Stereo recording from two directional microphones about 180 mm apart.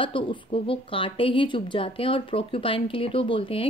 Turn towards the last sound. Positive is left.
turn(degrees=30)  # may be behind; listen again after turning